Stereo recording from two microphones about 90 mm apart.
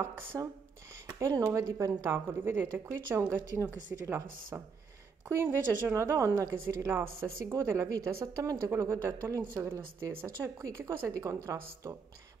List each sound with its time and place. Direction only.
0.3 s a woman's voice: 20° right (ahead or behind)
1.4 s a woman's voice: 35° right (ahead or behind)
6.6 s a woman's voice: 25° right (ahead or behind)
9.5 s a woman's voice: 25° right (ahead or behind)
10.0 s a woman's voice: 35° right (ahead or behind)